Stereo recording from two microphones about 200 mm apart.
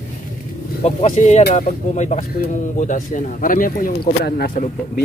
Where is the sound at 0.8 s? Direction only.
35° left (ahead or behind).